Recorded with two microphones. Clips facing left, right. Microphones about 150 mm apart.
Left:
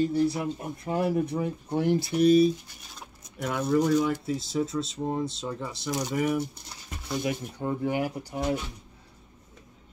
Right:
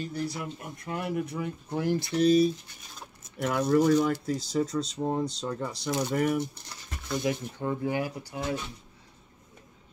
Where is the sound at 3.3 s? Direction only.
Centre (ahead or behind).